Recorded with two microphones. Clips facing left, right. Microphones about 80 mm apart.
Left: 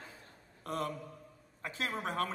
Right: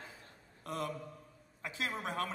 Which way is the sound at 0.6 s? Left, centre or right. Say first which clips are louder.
Left 2 dB; left.